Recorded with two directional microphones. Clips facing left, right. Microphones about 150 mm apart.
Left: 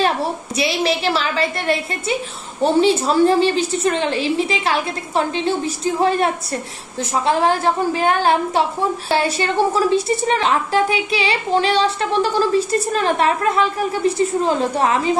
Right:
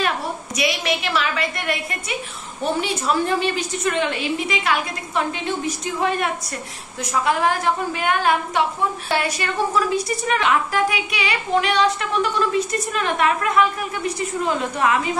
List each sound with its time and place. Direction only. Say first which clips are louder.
0.6 s a woman's voice: left 4 dB; 30° left (ahead or behind)